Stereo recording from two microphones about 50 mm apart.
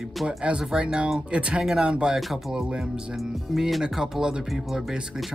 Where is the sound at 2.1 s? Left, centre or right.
Centre.